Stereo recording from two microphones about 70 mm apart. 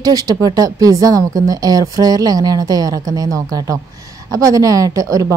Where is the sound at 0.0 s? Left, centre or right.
Right.